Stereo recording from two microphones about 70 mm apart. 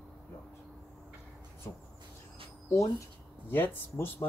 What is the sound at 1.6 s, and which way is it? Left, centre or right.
Speech, left.